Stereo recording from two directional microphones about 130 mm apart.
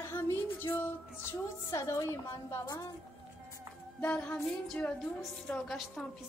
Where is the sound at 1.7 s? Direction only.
25° left (ahead or behind).